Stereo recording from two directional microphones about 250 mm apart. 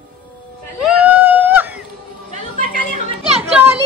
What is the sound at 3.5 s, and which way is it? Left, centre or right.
Children playing, centre.